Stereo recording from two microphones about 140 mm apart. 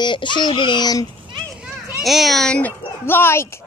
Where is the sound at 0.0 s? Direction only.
35° left (ahead or behind).